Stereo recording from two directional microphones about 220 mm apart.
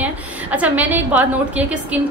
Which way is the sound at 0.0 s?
5° right (ahead or behind).